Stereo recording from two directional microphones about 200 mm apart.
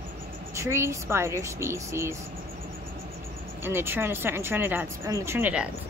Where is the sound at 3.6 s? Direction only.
10° right (ahead or behind).